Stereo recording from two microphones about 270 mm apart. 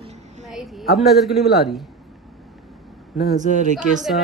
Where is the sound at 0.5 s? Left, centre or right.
Centre.